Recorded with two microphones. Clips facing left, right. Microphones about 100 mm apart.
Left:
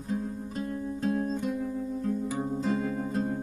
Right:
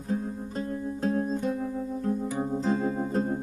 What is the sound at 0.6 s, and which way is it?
Music, 40° right (ahead or behind).